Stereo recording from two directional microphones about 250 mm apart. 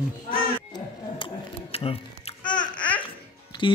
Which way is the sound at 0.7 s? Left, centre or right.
Left.